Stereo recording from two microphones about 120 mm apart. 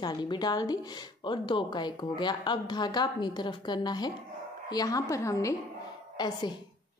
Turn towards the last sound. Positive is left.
turn(degrees=40)  # may be behind; listen again after turning